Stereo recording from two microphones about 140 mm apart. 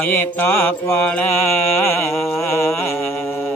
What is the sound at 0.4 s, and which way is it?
Mantra, 15° left (ahead or behind).